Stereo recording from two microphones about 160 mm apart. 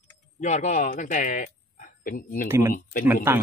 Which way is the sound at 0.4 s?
50° left (ahead or behind).